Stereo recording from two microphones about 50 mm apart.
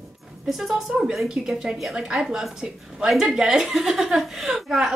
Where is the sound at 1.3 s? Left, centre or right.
Centre.